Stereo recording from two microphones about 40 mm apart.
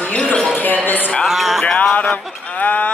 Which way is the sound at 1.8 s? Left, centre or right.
Left.